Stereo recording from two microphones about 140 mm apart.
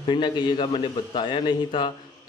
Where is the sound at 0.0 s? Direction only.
35° left (ahead or behind).